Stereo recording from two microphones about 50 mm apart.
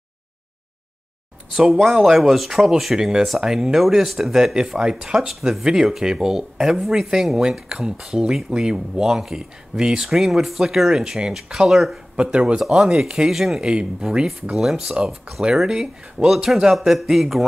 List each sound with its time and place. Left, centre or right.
1.7 s speech: centre
12.2 s speech: right
12.5 s speech: centre
13.6 s speech: centre